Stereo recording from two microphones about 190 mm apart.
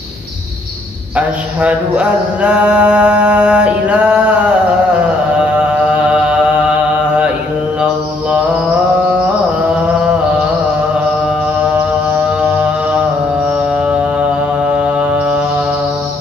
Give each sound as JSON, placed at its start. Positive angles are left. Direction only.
{"t": 1.1, "sound": "mantra", "side_deg": -5}
{"t": 5.6, "sound": "mantra", "side_deg": -5}
{"t": 12.2, "sound": "mantra", "side_deg": -5}
{"t": 14.8, "sound": "mantra", "side_deg": -5}